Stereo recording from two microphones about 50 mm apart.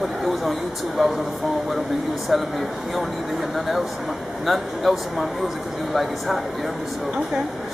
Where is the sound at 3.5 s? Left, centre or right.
Centre.